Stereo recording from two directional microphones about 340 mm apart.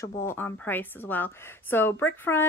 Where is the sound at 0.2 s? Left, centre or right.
Centre.